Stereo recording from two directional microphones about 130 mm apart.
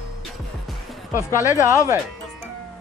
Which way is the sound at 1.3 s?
25° left (ahead or behind).